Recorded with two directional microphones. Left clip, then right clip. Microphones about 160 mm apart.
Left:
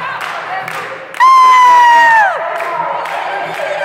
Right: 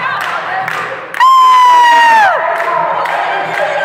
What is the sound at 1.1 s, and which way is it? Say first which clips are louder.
Crowd: even; 10° left (ahead or behind).